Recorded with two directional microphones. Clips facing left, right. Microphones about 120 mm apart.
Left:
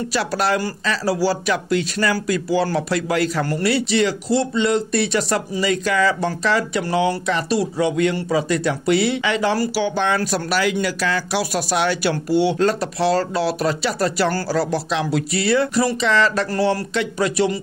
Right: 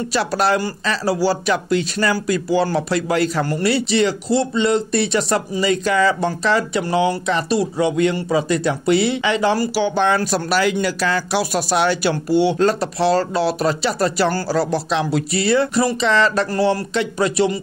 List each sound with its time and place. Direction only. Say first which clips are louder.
0.1 s speech: right 3 dB; 25° right (ahead or behind)